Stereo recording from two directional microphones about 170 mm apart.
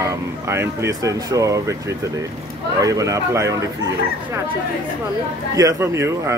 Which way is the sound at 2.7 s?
20° right (ahead or behind).